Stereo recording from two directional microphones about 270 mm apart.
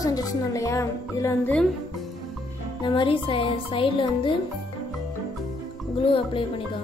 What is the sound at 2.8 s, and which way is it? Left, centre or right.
Speech, centre.